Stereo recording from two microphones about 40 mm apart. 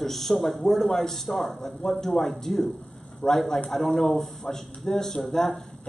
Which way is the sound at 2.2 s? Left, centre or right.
Centre.